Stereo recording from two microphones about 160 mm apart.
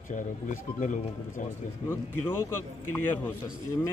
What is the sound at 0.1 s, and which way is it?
Speech, 50° left (ahead or behind).